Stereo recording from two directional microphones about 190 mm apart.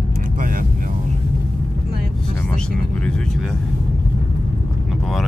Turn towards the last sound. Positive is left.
turn(degrees=5)  # may be behind; listen again after turning